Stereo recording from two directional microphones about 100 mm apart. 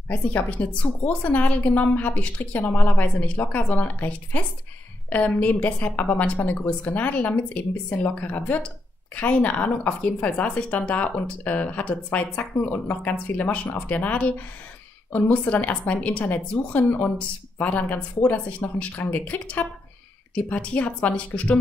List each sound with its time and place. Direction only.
0.1 s a woman's voice: 15° left (ahead or behind)